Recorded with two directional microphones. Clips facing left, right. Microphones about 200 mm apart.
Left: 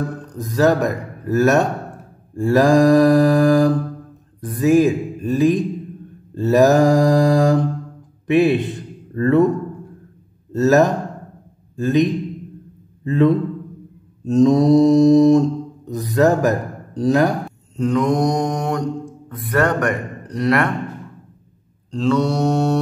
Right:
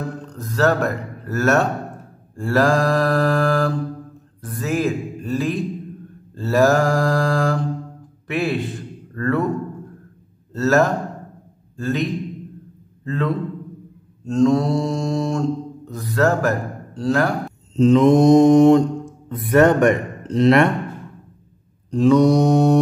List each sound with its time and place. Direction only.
0.4 s mantra: 15° left (ahead or behind)
8.3 s a man's voice: 20° left (ahead or behind)
10.5 s a man's voice: 15° left (ahead or behind)
13.0 s mantra: 15° left (ahead or behind)
15.9 s a man's voice: 15° left (ahead or behind)
17.7 s mantra: 25° right (ahead or behind)
21.9 s mantra: 15° right (ahead or behind)